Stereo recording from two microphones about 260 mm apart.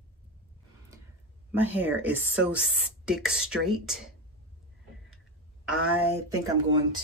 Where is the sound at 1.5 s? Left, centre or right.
Centre.